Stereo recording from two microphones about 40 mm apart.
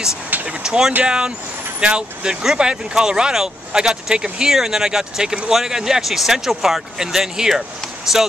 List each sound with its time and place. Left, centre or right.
0.5 s speech: centre